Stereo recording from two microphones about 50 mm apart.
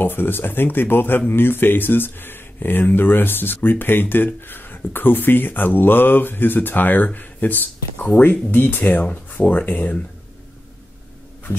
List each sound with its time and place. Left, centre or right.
0.0 s speech: left
9.0 s speech: left